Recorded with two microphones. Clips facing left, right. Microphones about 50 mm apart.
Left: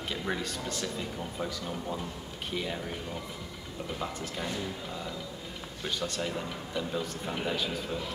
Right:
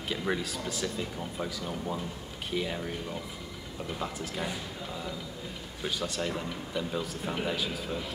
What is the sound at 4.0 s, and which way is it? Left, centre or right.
A man's voice, centre.